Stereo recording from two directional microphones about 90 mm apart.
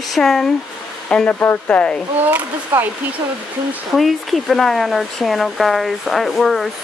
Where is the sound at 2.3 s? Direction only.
20° right (ahead or behind).